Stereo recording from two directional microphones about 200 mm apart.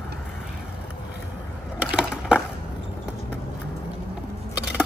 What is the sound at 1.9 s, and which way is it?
Crushing, 5° right (ahead or behind).